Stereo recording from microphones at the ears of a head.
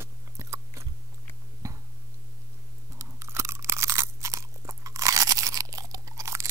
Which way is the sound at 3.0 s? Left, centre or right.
Right.